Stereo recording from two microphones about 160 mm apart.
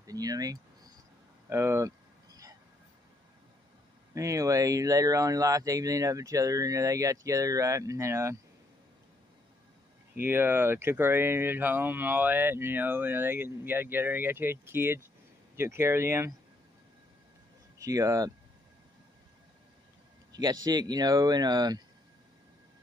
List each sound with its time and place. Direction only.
0.0 s a sound: 20° right (ahead or behind)
4.1 s speech: 20° right (ahead or behind)
10.1 s speech: 15° right (ahead or behind)
17.7 s speech: 20° right (ahead or behind)
20.3 s speech: 25° right (ahead or behind)